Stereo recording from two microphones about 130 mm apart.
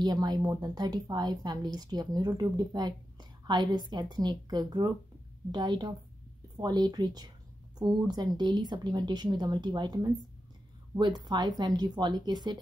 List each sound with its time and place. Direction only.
0.0 s speech: 30° right (ahead or behind)